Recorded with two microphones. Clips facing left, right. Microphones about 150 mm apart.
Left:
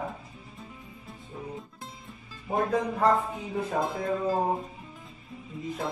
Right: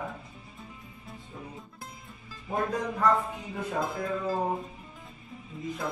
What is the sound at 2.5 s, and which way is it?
Music, 30° left (ahead or behind).